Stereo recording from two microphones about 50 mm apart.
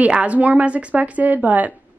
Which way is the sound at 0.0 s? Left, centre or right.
Right.